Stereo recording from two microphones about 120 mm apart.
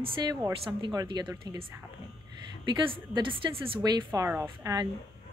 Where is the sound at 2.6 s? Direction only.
45° right (ahead or behind).